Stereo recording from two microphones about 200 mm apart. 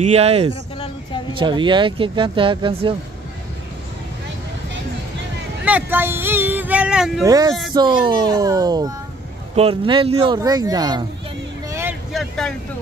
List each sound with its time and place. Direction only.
0.0 s speech: 30° right (ahead or behind)
5.7 s speech: 10° right (ahead or behind)
7.2 s speech: 20° right (ahead or behind)
12.1 s vehicle: centre (ahead or behind)